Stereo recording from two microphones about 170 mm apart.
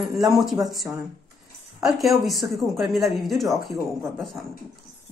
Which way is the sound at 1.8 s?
Centre (ahead or behind).